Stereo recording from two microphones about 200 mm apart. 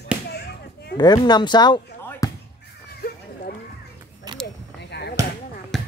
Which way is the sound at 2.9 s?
50° left (ahead or behind).